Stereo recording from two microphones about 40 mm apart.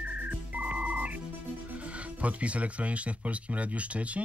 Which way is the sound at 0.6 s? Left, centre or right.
Right.